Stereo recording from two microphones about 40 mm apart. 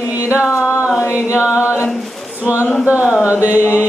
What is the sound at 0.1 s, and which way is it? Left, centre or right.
Music, right.